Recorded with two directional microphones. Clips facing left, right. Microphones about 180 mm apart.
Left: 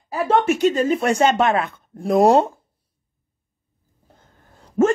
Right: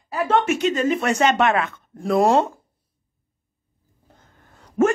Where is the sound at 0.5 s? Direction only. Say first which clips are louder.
Left 3 dB; 35° left (ahead or behind).